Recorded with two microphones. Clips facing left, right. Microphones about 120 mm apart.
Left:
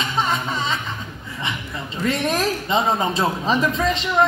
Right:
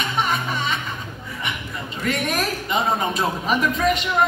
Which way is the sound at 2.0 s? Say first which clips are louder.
Left 3 dB; 25° left (ahead or behind).